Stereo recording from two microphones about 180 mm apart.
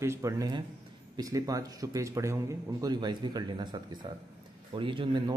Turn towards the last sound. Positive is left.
turn(degrees=-25)  # may be behind; listen again after turning